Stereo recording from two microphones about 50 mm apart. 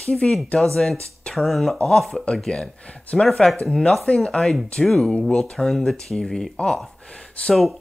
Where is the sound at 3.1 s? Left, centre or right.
Left.